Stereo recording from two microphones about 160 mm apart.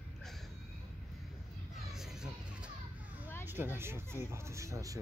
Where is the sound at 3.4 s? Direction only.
15° right (ahead or behind).